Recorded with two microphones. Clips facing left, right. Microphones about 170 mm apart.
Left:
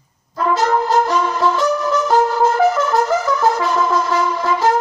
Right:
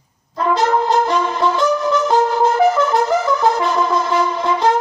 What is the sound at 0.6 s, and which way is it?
Brass instrument, 20° right (ahead or behind).